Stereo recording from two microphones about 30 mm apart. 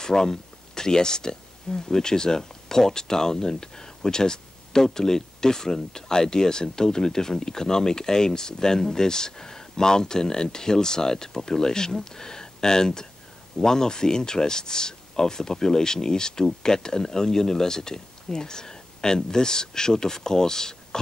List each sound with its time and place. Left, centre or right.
0.0 s speech: left